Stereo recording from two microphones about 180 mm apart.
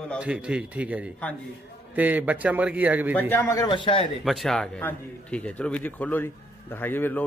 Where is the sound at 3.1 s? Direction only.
10° left (ahead or behind); by 4.1 s 30° left (ahead or behind).